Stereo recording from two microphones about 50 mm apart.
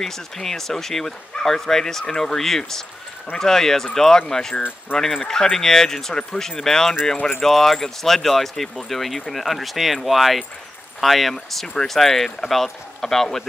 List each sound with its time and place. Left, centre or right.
0.0 s speech: centre